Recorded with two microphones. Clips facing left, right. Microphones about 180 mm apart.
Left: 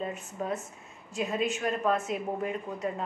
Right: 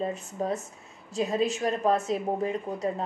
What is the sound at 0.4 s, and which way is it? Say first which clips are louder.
Speech: right 3 dB; 35° right (ahead or behind).